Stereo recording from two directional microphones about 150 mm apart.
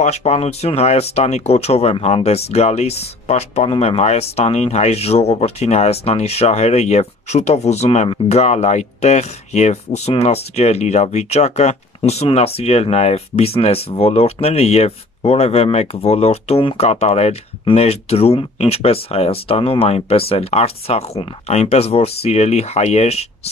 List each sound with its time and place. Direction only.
0.0 s speech: 45° left (ahead or behind)